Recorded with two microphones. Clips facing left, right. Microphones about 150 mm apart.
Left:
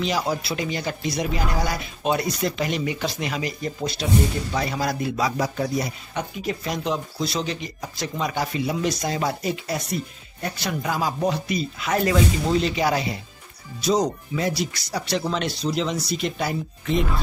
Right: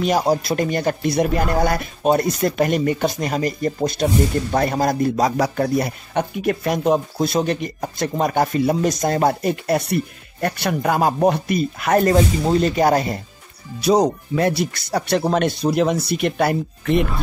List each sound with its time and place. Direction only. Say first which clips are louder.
0.0 s speech: right 6 dB; 45° right (ahead or behind)
5.4 s speech: right 5 dB; 60° right (ahead or behind)
13.7 s speech: right 5 dB; 60° right (ahead or behind)